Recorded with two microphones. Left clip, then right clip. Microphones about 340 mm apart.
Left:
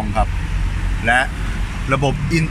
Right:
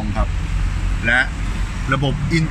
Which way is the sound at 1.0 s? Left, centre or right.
Centre.